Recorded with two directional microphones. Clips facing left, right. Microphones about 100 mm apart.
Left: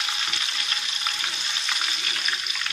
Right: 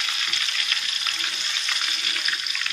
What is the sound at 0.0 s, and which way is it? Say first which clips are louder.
Frying: even; 25° left (ahead or behind).